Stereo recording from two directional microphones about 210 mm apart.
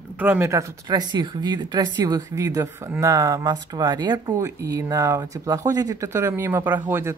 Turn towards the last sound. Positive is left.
turn(degrees=-10)  # may be behind; listen again after turning